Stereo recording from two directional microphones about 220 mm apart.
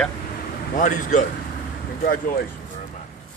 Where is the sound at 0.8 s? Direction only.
35° left (ahead or behind).